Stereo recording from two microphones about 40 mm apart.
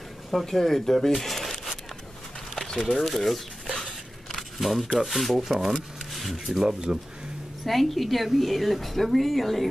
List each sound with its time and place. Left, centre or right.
0.3 s speech: centre
1.2 s crumpling: centre
2.5 s a sound: centre
3.0 s speech: centre
4.6 s speech: centre
5.9 s a sound: centre
6.3 s speech: centre
7.6 s speech: centre